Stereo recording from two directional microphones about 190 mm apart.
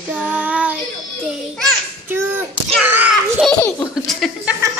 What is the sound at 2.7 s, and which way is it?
Speech, 10° right (ahead or behind).